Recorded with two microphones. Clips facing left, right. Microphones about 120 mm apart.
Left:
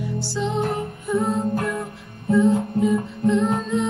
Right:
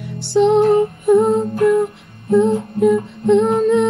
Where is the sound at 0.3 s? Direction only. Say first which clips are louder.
Right 14 dB; 60° right (ahead or behind).